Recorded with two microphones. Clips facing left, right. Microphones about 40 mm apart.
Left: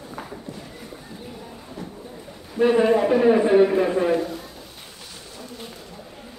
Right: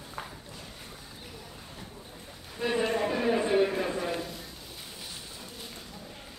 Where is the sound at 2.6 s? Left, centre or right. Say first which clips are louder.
Left 11 dB; left.